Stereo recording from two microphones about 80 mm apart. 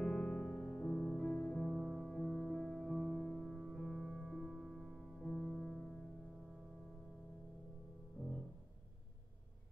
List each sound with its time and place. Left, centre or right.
0.0 s music: centre
1.2 s music: centre
1.7 s music: centre